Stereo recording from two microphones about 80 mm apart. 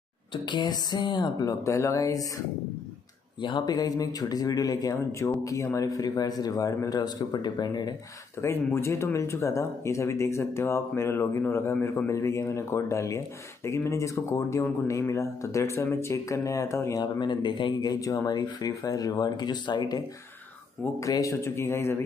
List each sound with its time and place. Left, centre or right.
0.3 s speech: left
1.4 s speech: left
3.3 s speech: left
3.7 s speech: left
8.4 s speech: left
17.0 s speech: left
18.0 s speech: left
21.0 s speech: left